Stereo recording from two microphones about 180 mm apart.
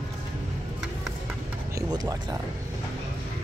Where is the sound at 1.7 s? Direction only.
20° right (ahead or behind).